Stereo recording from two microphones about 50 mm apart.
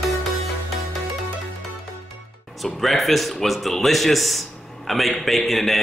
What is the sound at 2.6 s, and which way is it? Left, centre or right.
A man's voice, centre.